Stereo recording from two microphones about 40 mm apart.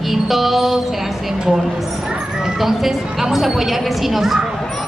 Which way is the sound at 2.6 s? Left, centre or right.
Centre.